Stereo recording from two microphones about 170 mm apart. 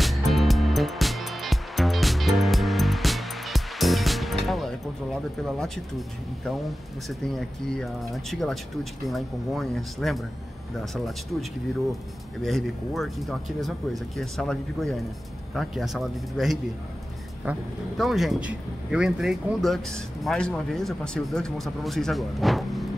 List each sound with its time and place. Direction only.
0.0 s music: centre (ahead or behind)
5.6 s speech: centre (ahead or behind)
12.4 s speech: centre (ahead or behind)